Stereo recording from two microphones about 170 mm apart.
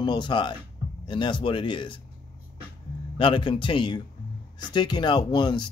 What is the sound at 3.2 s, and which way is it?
Speech, 30° left (ahead or behind).